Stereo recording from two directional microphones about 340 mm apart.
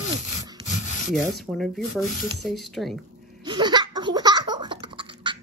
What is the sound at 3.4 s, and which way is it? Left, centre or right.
Laughter, centre.